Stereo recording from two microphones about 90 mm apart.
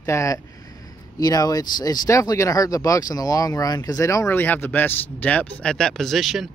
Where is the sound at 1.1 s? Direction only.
45° left (ahead or behind).